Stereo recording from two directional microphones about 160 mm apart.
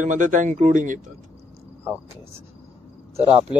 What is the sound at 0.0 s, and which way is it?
Speech, 50° right (ahead or behind).